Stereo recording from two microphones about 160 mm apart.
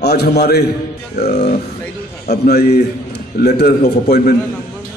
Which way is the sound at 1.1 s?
75° left (ahead or behind).